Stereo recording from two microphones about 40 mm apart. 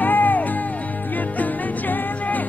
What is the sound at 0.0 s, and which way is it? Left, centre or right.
Music, left.